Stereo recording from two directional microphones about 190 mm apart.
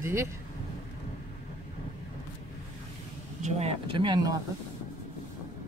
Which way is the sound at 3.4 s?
35° right (ahead or behind).